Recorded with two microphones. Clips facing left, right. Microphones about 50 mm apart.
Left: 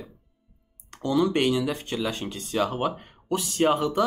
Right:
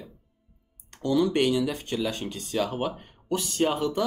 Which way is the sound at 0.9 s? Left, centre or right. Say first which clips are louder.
Even; centre.